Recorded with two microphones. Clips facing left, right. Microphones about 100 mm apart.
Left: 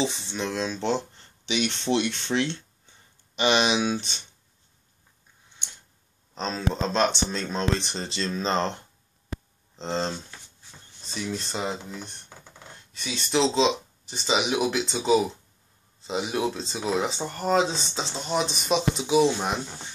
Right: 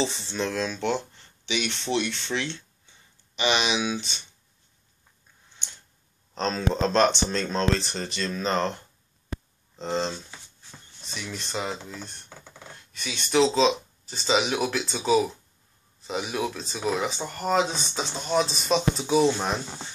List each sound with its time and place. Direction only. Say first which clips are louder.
0.0 s speech: even; 15° left (ahead or behind); by 4.0 s 40° left (ahead or behind)
6.3 s speech: right 2 dB; 5° left (ahead or behind); by 10.1 s 30° left (ahead or behind)
11.3 s speech: right 1 dB; 25° left (ahead or behind)
12.4 s a sound: right 2 dB; 5° left (ahead or behind)
12.9 s speech: right 2 dB; 30° left (ahead or behind); by 19.6 s 10° left (ahead or behind)